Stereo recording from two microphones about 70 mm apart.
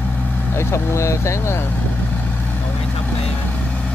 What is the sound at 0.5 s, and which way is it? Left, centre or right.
Speech, left.